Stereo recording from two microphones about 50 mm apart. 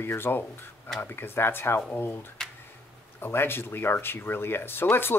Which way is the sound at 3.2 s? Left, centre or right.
Left.